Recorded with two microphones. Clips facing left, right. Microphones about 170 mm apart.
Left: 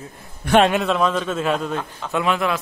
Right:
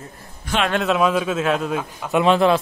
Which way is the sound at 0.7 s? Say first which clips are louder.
Right 1 dB; 5° right (ahead or behind).